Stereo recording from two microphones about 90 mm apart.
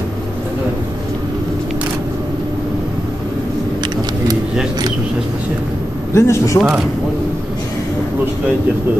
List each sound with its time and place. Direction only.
6.1 s speech: 30° left (ahead or behind)